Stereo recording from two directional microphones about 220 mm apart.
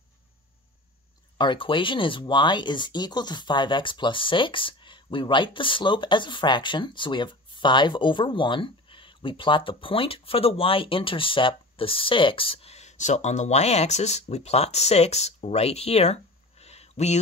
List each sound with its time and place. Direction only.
1.4 s speech: 20° left (ahead or behind)